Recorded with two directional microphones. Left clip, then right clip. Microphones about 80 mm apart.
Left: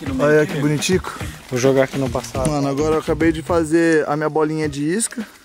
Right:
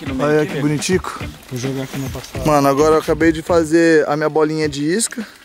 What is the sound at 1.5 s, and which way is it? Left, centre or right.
Speech, left.